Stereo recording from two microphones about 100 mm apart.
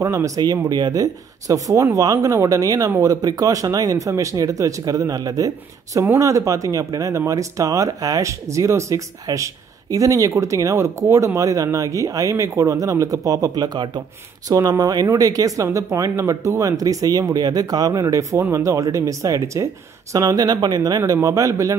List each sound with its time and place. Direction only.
0.0 s speech: 35° right (ahead or behind)
21.0 s speech: 30° right (ahead or behind)